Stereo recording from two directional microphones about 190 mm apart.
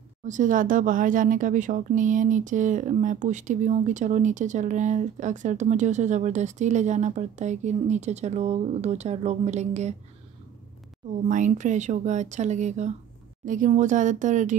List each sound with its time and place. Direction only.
0.2 s speech: 40° right (ahead or behind)
11.2 s speech: 40° right (ahead or behind)